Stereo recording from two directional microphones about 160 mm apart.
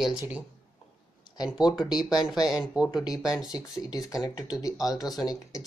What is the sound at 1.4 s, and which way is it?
Speech, 5° right (ahead or behind).